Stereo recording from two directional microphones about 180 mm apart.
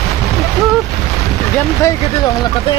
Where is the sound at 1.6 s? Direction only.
15° left (ahead or behind).